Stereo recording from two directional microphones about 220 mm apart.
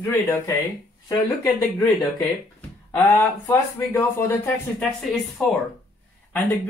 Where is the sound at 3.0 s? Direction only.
10° left (ahead or behind).